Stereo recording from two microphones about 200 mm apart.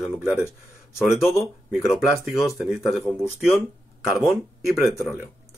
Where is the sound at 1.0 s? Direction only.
Centre (ahead or behind).